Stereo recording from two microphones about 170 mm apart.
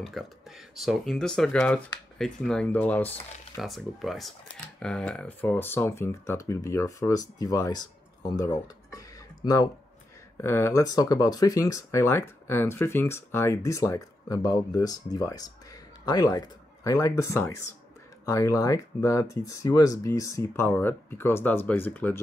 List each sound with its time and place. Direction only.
0.0 s speech: centre (ahead or behind)
3.5 s speech: centre (ahead or behind)